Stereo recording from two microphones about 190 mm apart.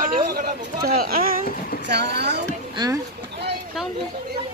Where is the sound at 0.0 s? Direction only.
50° right (ahead or behind).